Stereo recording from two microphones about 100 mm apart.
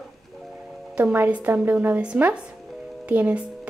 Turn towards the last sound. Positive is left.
turn(degrees=-15)  # may be behind; listen again after turning